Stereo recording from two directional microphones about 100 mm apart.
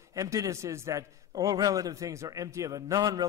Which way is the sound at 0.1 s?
35° right (ahead or behind).